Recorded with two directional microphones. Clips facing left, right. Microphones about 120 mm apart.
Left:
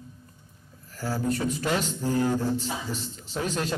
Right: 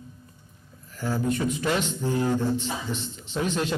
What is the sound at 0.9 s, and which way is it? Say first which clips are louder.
A man's voice: right 1 dB; 40° left (ahead or behind).